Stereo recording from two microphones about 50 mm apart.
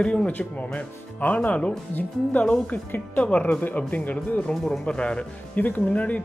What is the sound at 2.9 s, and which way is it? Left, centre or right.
Speech, left.